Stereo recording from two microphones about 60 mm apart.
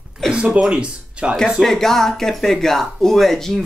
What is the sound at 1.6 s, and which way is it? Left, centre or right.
Speech, centre.